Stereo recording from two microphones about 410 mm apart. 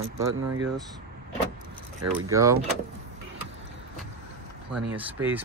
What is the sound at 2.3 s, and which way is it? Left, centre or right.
Speech, centre.